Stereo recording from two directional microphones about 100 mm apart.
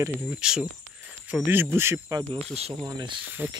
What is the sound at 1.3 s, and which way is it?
Speech, 20° right (ahead or behind).